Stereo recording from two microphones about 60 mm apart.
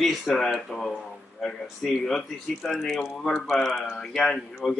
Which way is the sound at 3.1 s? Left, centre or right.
Centre.